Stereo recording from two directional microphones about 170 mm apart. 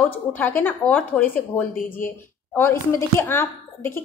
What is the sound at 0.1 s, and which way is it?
A woman's voice, 10° left (ahead or behind).